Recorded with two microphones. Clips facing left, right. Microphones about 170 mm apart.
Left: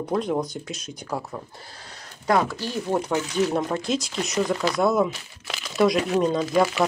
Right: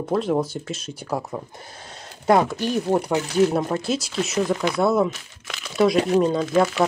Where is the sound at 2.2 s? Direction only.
25° right (ahead or behind).